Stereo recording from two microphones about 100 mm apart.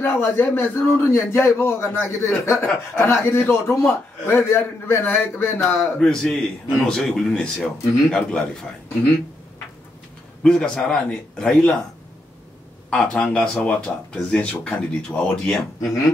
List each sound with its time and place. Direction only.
0.0 s a man's voice: 20° left (ahead or behind)
5.7 s a man's voice: 5° left (ahead or behind)
10.4 s speech: 10° left (ahead or behind)
12.9 s speech: 10° left (ahead or behind)